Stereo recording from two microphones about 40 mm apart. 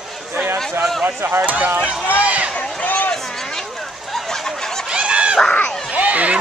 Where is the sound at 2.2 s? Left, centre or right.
Right.